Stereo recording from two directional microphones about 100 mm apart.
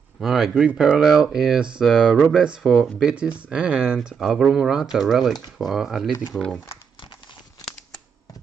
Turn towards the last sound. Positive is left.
turn(degrees=55)  # may be behind; listen again after turning